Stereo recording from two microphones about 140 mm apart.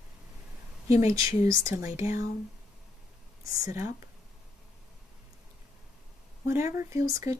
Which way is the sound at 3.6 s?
20° right (ahead or behind).